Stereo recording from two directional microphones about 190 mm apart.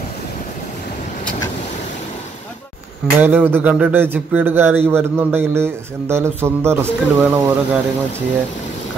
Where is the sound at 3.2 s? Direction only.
10° right (ahead or behind).